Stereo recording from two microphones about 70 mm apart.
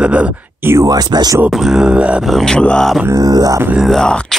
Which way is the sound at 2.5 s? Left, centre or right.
Centre.